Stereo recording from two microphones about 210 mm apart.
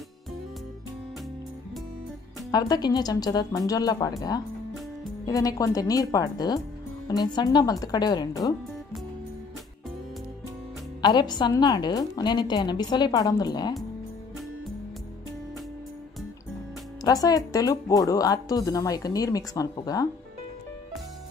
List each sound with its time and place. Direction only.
2.5 s a woman's voice: 20° left (ahead or behind)
5.2 s a woman's voice: 15° left (ahead or behind)
11.0 s a woman's voice: 20° left (ahead or behind)
17.0 s speech: 15° left (ahead or behind)